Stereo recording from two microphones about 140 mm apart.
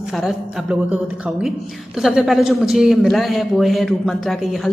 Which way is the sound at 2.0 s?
Centre (ahead or behind).